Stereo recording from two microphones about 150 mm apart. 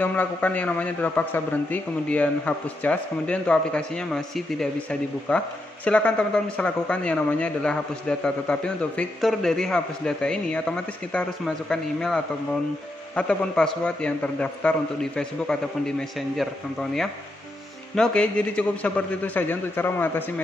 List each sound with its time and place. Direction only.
0.0 s a man's voice: 10° left (ahead or behind)
17.9 s a man's voice: 5° left (ahead or behind)